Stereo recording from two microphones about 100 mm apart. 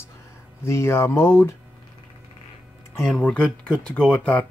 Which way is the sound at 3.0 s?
10° left (ahead or behind).